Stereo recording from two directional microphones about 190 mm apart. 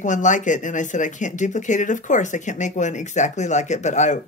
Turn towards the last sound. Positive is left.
turn(degrees=40)  # may be behind; listen again after turning